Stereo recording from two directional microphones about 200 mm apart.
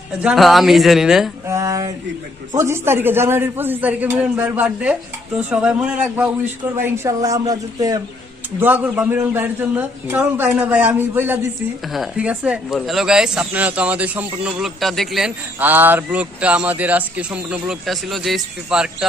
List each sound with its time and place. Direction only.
0.2 s speech: centre (ahead or behind)
1.5 s a sound: 15° right (ahead or behind)
2.5 s a man's voice: 15° right (ahead or behind)